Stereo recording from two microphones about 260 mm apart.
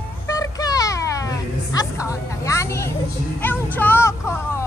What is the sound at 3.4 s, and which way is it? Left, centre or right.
Music, centre.